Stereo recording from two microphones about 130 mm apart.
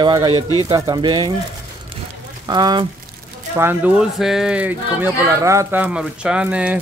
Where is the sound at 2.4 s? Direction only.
30° right (ahead or behind).